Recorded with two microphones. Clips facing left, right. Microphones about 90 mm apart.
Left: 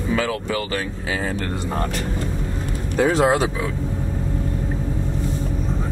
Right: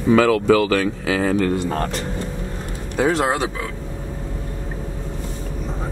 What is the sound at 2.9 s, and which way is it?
Speech, centre (ahead or behind).